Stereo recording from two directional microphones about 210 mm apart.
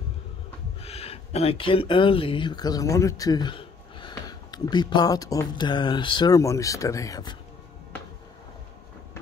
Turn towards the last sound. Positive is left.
turn(degrees=15)  # may be behind; listen again after turning